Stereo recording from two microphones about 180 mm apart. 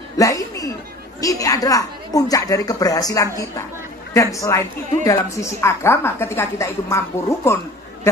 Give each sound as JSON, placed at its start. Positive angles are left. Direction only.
{"t": 0.2, "sound": "chuckle", "side_deg": 20}
{"t": 1.2, "sound": "a woman's voice", "side_deg": 20}